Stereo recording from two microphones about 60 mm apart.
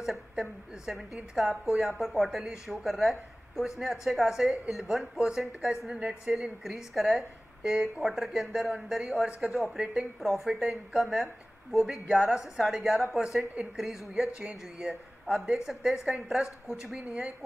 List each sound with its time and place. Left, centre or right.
0.0 s a woman's voice: centre